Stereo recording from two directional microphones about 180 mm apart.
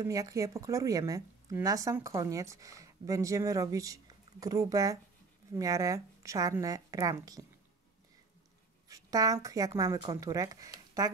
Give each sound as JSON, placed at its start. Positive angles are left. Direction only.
{"t": 0.0, "sound": "a woman's voice", "side_deg": -20}
{"t": 8.8, "sound": "speech", "side_deg": -20}